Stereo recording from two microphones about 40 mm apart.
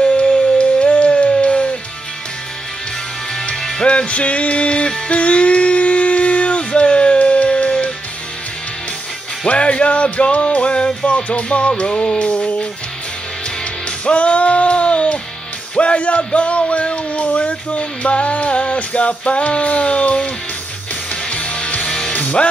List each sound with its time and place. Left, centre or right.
0.0 s a sound: left
3.8 s music: left
9.5 s music: left
13.8 s music: left